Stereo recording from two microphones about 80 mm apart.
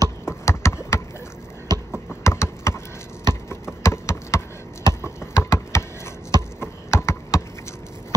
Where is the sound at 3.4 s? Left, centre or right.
Left.